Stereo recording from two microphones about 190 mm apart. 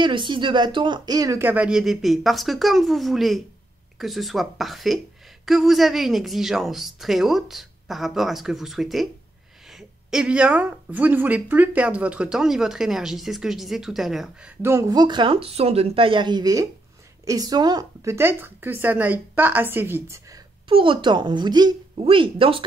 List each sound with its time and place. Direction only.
0.0 s a woman's voice: 25° right (ahead or behind); by 14.5 s centre (ahead or behind)
14.6 s speech: 15° right (ahead or behind)
20.6 s speech: 25° right (ahead or behind)